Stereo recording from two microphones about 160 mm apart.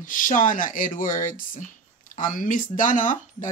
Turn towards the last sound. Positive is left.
turn(degrees=55)  # may be behind; listen again after turning